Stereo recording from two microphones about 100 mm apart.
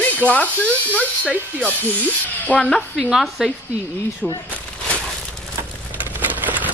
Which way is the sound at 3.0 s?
5° right (ahead or behind).